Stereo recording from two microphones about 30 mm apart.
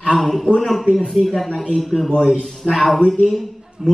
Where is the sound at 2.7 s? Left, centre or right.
Centre.